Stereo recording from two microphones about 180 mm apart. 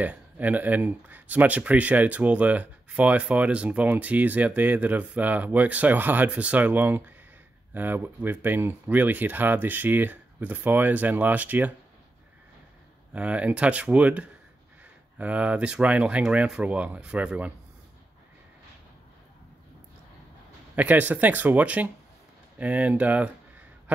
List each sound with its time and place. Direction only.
0.0 s speech: 10° right (ahead or behind)
13.1 s speech: 5° right (ahead or behind)
20.7 s speech: 10° right (ahead or behind)